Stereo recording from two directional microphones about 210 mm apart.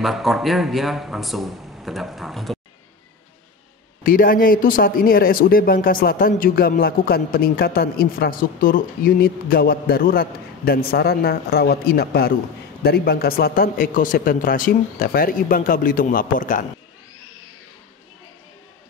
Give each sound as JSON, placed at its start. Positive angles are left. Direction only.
{"t": 0.0, "sound": "a man's voice", "side_deg": 0}
{"t": 4.0, "sound": "speech", "side_deg": 40}